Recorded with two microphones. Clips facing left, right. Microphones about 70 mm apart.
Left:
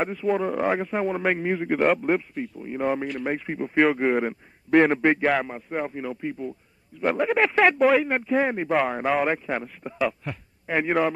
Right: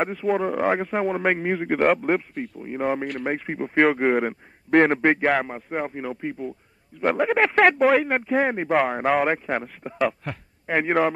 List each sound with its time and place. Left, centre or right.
0.0 s a man's voice: right
2.6 s speech: right
3.9 s a man's voice: right
9.9 s a man's voice: right